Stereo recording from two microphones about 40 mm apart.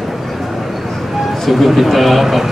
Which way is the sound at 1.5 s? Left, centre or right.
Centre.